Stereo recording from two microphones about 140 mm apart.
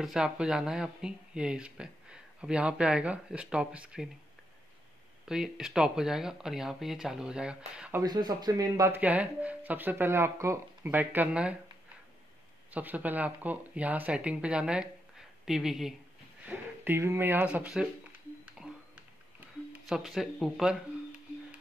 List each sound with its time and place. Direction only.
0.0 s speech: 5° right (ahead or behind)
5.2 s speech: 5° right (ahead or behind)
8.0 s speech: 30° right (ahead or behind); by 11.5 s 10° right (ahead or behind)
12.7 s speech: 10° right (ahead or behind)
16.4 s speech: 15° right (ahead or behind)
18.6 s a sound: 5° right (ahead or behind)
19.7 s speech: centre (ahead or behind)